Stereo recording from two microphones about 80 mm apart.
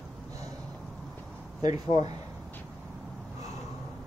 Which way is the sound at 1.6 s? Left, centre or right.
Right.